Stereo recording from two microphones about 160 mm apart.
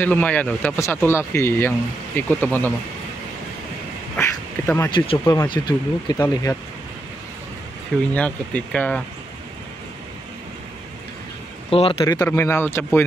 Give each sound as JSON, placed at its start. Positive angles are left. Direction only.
{"t": 0.0, "sound": "speech", "side_deg": 10}
{"t": 4.2, "sound": "quack", "side_deg": 15}
{"t": 4.9, "sound": "speech", "side_deg": 35}
{"t": 5.2, "sound": "speech", "side_deg": 15}
{"t": 5.5, "sound": "speech", "side_deg": 25}
{"t": 8.1, "sound": "speech", "side_deg": 10}
{"t": 11.7, "sound": "speech", "side_deg": 35}
{"t": 12.0, "sound": "speech", "side_deg": 20}